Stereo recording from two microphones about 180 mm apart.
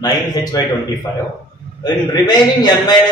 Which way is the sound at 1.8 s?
25° left (ahead or behind).